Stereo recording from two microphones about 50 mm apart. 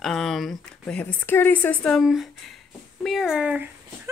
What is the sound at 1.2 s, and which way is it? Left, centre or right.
Speech, left.